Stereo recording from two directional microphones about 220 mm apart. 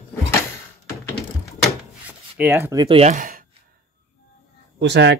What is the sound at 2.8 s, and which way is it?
Speech, 25° right (ahead or behind).